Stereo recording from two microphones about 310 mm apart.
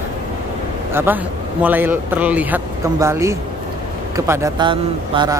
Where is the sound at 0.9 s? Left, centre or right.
Centre.